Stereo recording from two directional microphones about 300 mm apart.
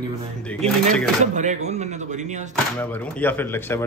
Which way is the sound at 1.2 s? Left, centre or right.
Right.